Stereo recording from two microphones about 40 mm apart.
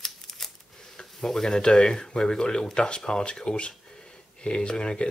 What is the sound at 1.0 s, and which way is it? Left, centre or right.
Speech, centre.